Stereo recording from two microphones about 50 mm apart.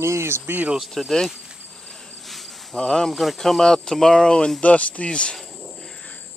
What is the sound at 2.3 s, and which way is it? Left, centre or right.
Cricket, centre.